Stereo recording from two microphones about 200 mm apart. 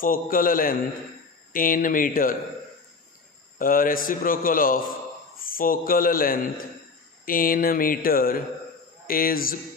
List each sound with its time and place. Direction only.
0.0 s a man's voice: 45° left (ahead or behind)
3.5 s a man's voice: 45° left (ahead or behind)